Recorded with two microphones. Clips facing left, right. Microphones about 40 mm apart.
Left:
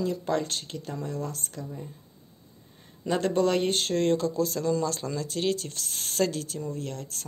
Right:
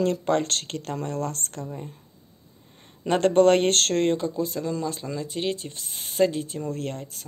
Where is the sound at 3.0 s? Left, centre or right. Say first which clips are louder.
Right 7 dB; right.